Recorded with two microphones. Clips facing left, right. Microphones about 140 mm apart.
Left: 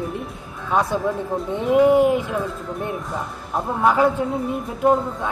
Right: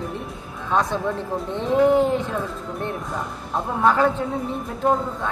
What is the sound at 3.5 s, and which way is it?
Speech, 10° left (ahead or behind).